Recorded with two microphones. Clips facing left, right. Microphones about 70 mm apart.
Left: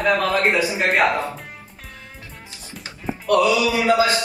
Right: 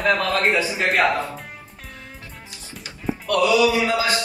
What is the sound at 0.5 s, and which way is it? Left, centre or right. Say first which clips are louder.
Mantra: left 1 dB; left.